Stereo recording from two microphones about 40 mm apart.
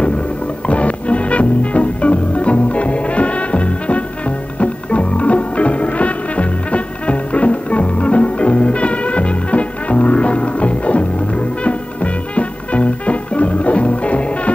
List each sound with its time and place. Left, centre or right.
0.7 s music: left